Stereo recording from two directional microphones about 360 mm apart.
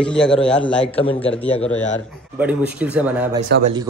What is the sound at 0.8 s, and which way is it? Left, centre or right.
Speech, centre.